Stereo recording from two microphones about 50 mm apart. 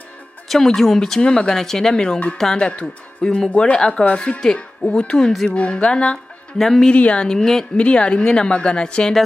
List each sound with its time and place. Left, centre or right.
0.7 s speech: centre
2.3 s speech: centre
2.6 s speech: left
5.1 s speech: centre
5.5 s speech: left
6.9 s speech: left
7.7 s speech: left